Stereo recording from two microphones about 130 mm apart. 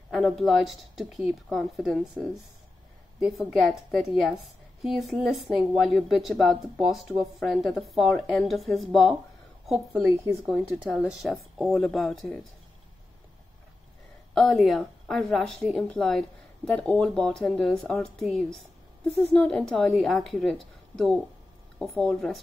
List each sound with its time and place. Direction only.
0.1 s a woman's voice: centre (ahead or behind)
10.4 s speech: 10° right (ahead or behind)
10.9 s a woman's voice: centre (ahead or behind)
14.3 s a woman's voice: centre (ahead or behind)